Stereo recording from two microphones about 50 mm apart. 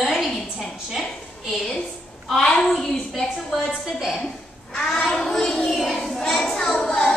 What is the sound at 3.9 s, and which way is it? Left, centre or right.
Speech, centre.